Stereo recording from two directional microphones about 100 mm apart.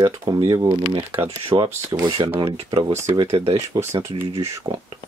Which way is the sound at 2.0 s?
50° right (ahead or behind).